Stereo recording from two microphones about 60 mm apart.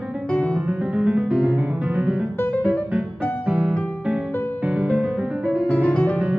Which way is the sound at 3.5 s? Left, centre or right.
Centre.